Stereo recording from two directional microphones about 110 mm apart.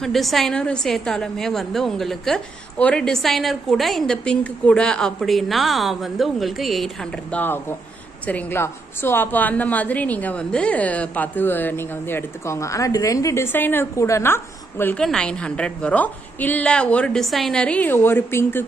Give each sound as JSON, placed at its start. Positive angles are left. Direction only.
{"t": 0.0, "sound": "a woman's voice", "side_deg": 0}
{"t": 15.0, "sound": "a woman's voice", "side_deg": 5}